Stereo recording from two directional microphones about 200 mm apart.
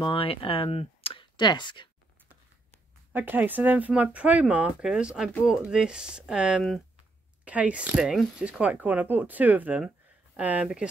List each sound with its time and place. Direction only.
0.0 s speech: 25° left (ahead or behind)
3.1 s speech: 10° right (ahead or behind)